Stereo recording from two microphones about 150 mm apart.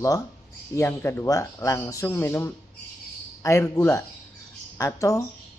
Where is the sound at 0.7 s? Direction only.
15° left (ahead or behind).